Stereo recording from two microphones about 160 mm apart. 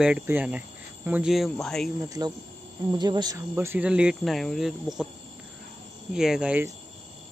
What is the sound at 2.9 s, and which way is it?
Speech, 25° right (ahead or behind).